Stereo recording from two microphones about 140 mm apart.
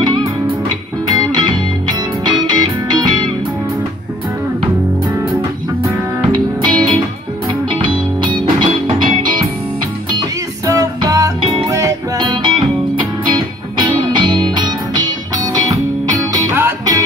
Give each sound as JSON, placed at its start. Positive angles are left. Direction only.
{"t": 0.0, "sound": "music", "side_deg": -35}
{"t": 6.3, "sound": "music", "side_deg": -35}